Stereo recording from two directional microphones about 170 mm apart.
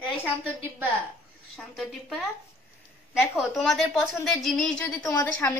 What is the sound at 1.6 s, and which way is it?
Speech, centre (ahead or behind).